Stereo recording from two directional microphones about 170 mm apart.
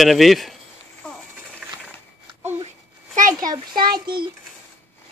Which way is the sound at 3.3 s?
25° right (ahead or behind).